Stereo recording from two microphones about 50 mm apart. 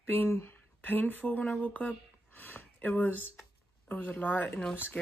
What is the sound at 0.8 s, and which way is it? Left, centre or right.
Speech, left.